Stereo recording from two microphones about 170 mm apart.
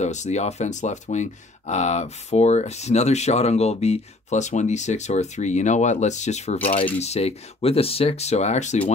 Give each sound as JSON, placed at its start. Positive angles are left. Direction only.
{"t": 0.0, "sound": "speech", "side_deg": 45}